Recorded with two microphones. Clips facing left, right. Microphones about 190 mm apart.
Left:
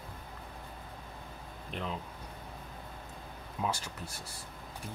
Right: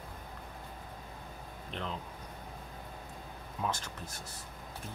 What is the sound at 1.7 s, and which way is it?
Speech, 5° left (ahead or behind).